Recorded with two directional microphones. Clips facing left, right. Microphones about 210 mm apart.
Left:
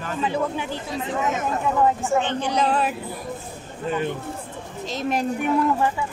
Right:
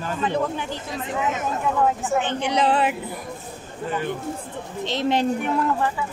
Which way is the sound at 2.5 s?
75° right (ahead or behind).